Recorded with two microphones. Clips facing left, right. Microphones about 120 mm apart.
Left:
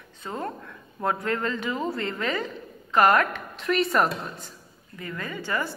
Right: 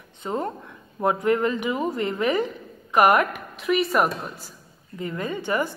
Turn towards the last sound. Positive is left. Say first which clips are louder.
# right 4 dB
turn(degrees=-15)  # may be behind; listen again after turning